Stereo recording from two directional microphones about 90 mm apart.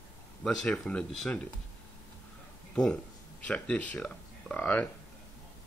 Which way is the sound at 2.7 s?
10° left (ahead or behind).